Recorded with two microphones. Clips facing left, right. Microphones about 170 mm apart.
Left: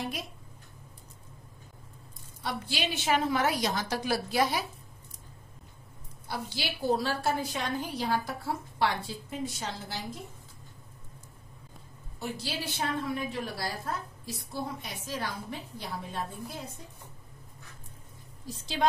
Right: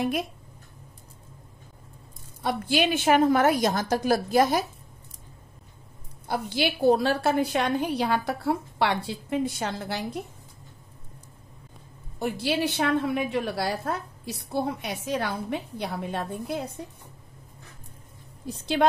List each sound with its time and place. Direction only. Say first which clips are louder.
0.0 s a woman's voice: right 9 dB; 55° right (ahead or behind)
2.4 s a woman's voice: right 9 dB; 50° right (ahead or behind)
6.2 s a woman's voice: right 9 dB; 55° right (ahead or behind)
12.2 s a woman's voice: right 10 dB; 60° right (ahead or behind)
18.5 s a woman's voice: right 7 dB; 65° right (ahead or behind)